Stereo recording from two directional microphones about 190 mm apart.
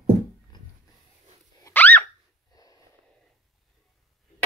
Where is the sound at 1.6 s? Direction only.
10° left (ahead or behind).